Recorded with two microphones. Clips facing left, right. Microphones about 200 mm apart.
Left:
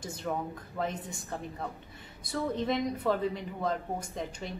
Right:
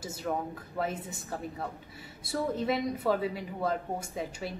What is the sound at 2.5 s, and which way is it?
A woman's voice, 5° right (ahead or behind).